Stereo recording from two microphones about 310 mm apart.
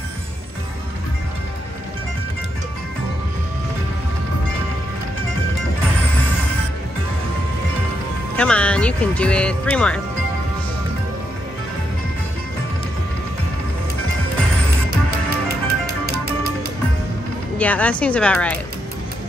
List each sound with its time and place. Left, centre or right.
8.4 s speech: centre
14.9 s music: right
17.6 s speech: centre